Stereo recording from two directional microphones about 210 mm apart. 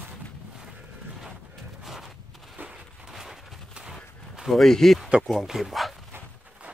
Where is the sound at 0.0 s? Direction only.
5° right (ahead or behind).